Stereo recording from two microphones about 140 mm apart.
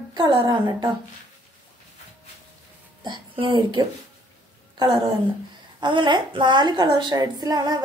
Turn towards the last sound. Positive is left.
turn(degrees=-25)  # may be behind; listen again after turning